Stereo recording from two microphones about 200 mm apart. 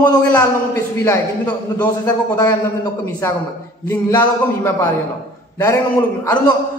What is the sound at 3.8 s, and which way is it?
Speech, 10° left (ahead or behind).